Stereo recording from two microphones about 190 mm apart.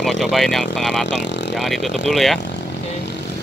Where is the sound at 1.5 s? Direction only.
Centre (ahead or behind).